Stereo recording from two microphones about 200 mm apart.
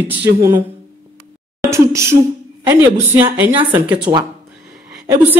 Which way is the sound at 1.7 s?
15° right (ahead or behind).